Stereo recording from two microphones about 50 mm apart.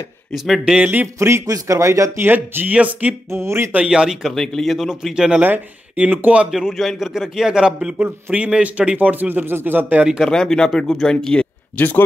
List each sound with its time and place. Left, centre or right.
0.7 s speech: right
1.2 s speech: right
2.1 s speech: right
2.7 s a man's voice: right
3.3 s speech: right
3.9 s speech: centre
4.4 s speech: centre
4.7 s speech: centre
5.1 s speech: centre
6.2 s speech: right
6.5 s speech: centre
8.0 s a man's voice: right
10.2 s speech: centre
11.7 s speech: left